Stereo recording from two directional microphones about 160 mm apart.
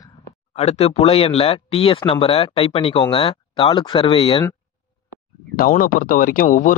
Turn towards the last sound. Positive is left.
turn(degrees=60)  # may be behind; listen again after turning